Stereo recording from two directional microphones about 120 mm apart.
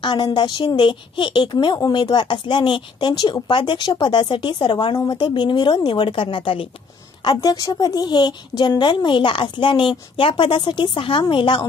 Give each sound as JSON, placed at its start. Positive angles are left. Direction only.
{"t": 0.0, "sound": "a woman's voice", "side_deg": 40}
{"t": 7.2, "sound": "a woman's voice", "side_deg": 30}